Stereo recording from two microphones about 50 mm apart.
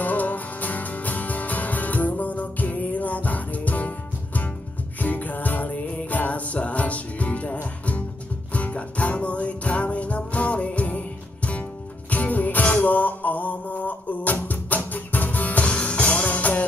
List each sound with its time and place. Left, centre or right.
0.0 s music: left
8.5 s music: left